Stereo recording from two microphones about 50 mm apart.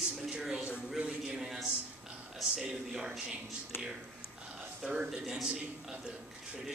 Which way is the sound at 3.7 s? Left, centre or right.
Left.